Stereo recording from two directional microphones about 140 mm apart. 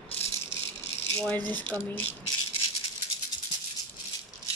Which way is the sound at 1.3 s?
10° left (ahead or behind).